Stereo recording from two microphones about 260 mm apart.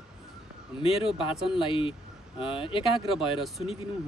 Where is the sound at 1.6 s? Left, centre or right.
Centre.